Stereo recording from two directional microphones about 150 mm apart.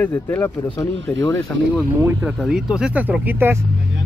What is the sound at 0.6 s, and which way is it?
Speech, 25° left (ahead or behind).